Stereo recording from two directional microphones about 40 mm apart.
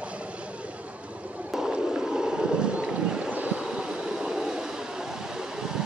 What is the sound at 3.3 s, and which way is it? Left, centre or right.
Waves, right.